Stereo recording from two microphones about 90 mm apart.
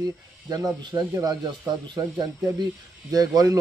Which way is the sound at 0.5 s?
50° right (ahead or behind).